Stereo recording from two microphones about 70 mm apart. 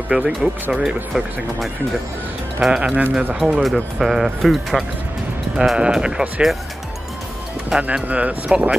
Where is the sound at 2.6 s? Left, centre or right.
Centre.